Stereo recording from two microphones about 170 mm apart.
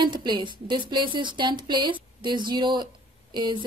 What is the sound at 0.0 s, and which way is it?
Speech, 25° right (ahead or behind).